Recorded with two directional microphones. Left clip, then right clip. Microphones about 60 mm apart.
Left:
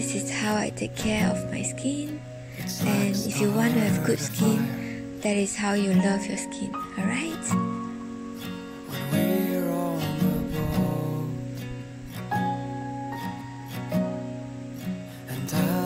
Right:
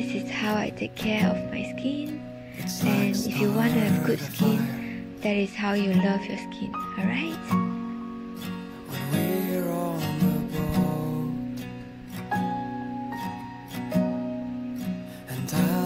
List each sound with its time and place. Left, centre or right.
0.0 s music: left
2.6 s music: centre
4.8 s speech: left
7.0 s music: left
7.5 s speech: centre
8.9 s music: centre
12.3 s music: centre
13.7 s music: centre
15.5 s music: centre